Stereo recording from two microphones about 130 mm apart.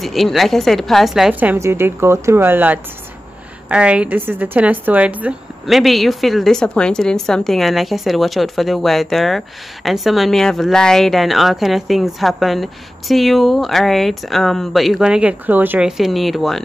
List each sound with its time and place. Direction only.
0.0 s a woman's voice: centre (ahead or behind)
1.3 s a woman's voice: 15° right (ahead or behind)
5.7 s a woman's voice: centre (ahead or behind)
16.0 s a woman's voice: centre (ahead or behind)